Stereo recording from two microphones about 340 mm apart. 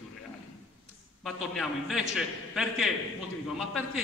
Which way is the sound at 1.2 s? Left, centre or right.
Centre.